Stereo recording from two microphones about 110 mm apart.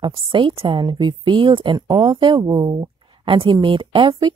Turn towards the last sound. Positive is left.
turn(degrees=-40)  # may be behind; listen again after turning